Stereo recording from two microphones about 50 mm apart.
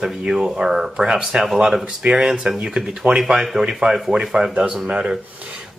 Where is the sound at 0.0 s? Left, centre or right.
Centre.